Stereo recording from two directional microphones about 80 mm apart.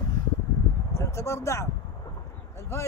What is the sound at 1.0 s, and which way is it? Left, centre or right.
Speech, left.